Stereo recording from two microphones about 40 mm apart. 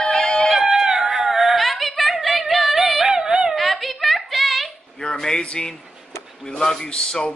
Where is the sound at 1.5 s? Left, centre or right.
Centre.